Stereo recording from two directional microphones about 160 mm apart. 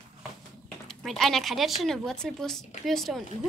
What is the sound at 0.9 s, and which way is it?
Speech, centre (ahead or behind).